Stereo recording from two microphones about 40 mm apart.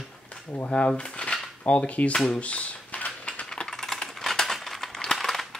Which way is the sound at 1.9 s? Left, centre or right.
Left.